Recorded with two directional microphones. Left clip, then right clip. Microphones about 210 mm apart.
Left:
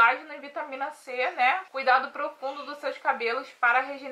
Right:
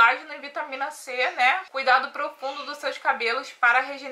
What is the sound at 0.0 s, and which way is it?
A woman's voice, 5° left (ahead or behind).